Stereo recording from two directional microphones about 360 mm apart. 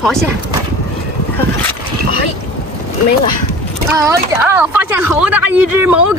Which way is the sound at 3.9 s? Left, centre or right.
Centre.